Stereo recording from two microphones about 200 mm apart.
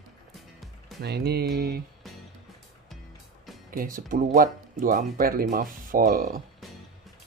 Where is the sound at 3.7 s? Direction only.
45° right (ahead or behind).